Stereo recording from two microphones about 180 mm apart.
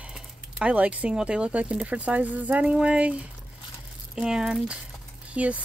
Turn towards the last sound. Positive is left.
turn(degrees=-5)  # may be behind; listen again after turning